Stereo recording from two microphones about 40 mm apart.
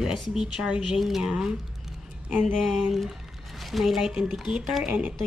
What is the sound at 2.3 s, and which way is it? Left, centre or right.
Speech, right.